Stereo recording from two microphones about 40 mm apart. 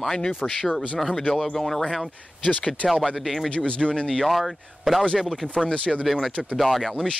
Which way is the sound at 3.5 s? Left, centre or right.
Left.